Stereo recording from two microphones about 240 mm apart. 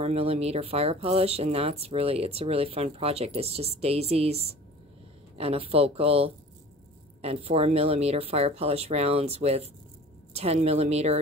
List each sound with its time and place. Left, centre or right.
0.0 s speech: right